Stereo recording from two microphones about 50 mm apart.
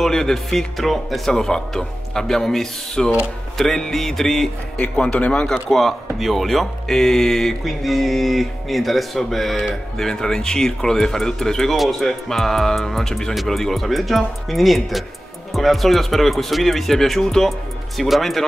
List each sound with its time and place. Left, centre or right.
0.0 s speech: centre
4.9 s speech: left
5.5 s speech: centre